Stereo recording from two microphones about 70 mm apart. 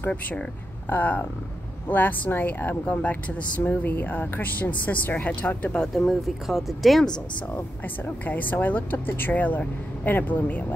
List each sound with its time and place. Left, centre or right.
0.1 s speech: centre
5.8 s speech: centre
7.5 s speech: left